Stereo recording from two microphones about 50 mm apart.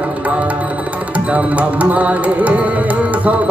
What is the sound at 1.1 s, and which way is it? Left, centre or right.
Music, right.